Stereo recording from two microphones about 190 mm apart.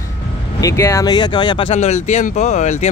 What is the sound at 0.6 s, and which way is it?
Speech, 15° left (ahead or behind).